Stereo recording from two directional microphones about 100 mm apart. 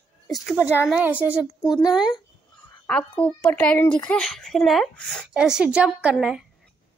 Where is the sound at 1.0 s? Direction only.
15° right (ahead or behind).